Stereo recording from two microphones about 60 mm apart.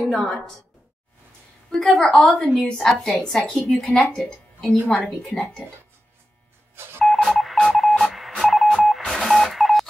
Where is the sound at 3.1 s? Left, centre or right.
Centre.